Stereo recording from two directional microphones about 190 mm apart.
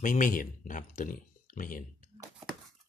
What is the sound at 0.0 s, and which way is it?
Speech, 45° left (ahead or behind).